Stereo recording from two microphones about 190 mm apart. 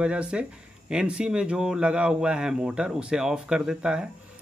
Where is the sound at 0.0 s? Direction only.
5° right (ahead or behind).